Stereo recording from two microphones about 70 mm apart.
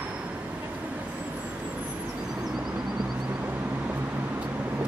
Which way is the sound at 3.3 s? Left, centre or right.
Right.